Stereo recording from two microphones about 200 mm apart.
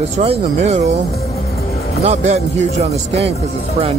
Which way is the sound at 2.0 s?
35° right (ahead or behind).